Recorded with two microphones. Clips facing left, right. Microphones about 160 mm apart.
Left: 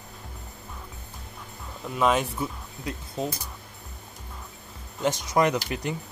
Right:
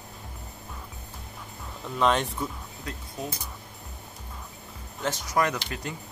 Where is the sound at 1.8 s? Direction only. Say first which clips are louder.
Left 1 dB; 5° left (ahead or behind).